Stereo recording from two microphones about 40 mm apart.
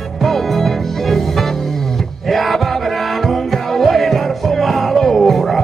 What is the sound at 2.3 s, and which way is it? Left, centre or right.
Music, centre.